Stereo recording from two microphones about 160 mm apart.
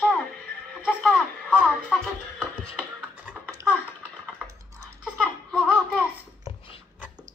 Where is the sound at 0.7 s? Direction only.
5° right (ahead or behind).